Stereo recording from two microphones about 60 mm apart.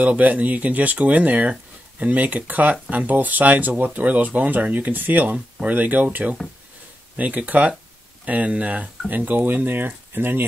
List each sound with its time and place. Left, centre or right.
0.0 s speech: right